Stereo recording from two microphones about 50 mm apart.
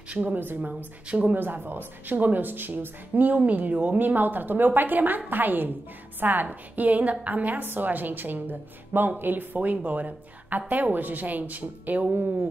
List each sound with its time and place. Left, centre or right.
0.2 s a woman's voice: right
1.0 s speech: right
1.4 s a woman's voice: right